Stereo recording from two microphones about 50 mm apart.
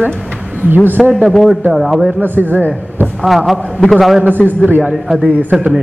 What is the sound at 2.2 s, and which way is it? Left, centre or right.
Speech, right.